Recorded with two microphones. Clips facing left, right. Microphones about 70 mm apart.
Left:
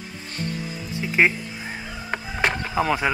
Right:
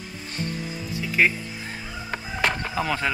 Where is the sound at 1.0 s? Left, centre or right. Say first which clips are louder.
Left 2 dB; left.